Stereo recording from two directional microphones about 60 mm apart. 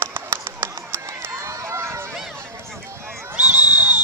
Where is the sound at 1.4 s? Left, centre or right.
Right.